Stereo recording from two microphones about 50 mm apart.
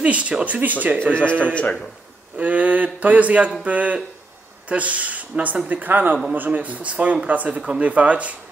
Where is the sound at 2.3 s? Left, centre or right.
Right.